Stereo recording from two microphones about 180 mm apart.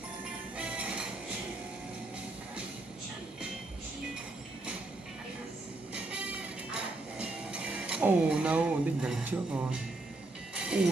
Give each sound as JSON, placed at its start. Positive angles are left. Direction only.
{"t": 0.6, "sound": "music", "side_deg": -5}
{"t": 5.9, "sound": "music", "side_deg": -5}
{"t": 10.5, "sound": "train", "side_deg": -5}